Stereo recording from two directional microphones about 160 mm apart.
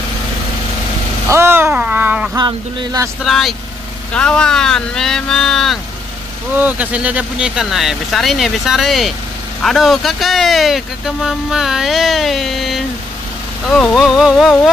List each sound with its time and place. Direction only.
1.3 s speech: 15° right (ahead or behind)
2.3 s speech: 25° right (ahead or behind)
3.3 s speech: centre (ahead or behind)
6.5 s speech: 10° right (ahead or behind)